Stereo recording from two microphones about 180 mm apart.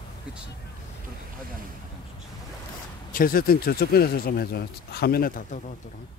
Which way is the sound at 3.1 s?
50° left (ahead or behind).